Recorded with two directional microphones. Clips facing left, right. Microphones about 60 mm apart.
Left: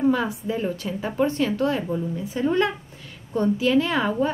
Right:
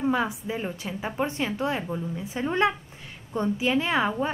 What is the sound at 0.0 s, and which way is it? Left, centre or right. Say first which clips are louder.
A woman's voice: left 4 dB; centre.